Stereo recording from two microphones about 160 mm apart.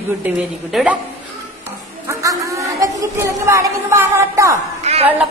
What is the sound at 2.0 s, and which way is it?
A woman's voice, 20° right (ahead or behind).